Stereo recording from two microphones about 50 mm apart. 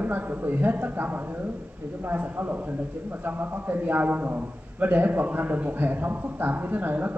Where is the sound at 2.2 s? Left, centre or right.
Right.